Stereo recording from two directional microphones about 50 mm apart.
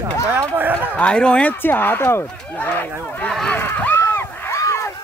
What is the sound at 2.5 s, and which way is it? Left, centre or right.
Speech, left.